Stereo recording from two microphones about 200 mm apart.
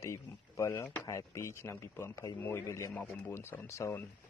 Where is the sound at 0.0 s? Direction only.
15° left (ahead or behind).